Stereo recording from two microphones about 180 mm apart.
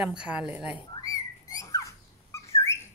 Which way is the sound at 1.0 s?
20° left (ahead or behind).